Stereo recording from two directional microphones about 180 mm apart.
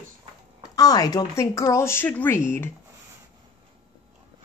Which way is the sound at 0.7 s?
20° left (ahead or behind).